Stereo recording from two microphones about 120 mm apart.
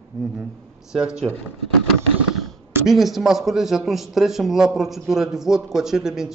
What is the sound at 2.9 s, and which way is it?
A man's voice, centre (ahead or behind).